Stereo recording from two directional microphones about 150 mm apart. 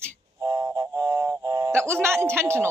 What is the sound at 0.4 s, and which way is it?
Music, 20° right (ahead or behind).